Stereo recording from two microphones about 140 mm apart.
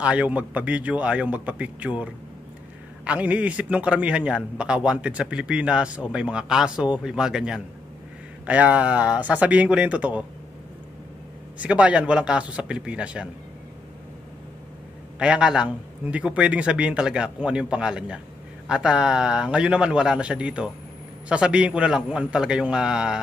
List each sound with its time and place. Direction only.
0.0 s speech: 10° right (ahead or behind)
3.1 s speech: 10° right (ahead or behind)
11.5 s speech: 10° right (ahead or behind)
15.1 s speech: 5° right (ahead or behind)